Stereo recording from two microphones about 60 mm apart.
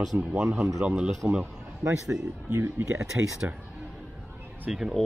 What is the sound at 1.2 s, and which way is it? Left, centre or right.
Speech, right.